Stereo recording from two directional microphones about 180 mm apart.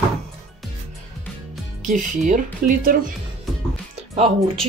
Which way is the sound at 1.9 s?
45° right (ahead or behind).